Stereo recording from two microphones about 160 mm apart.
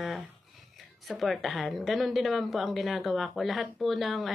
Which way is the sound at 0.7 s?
Centre (ahead or behind).